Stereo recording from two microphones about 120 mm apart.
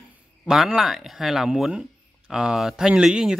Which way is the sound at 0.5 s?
5° right (ahead or behind).